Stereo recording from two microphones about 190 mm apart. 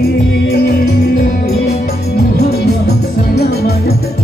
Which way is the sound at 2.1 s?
55° left (ahead or behind).